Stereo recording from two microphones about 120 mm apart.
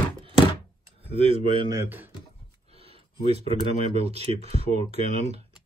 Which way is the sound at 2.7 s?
55° right (ahead or behind).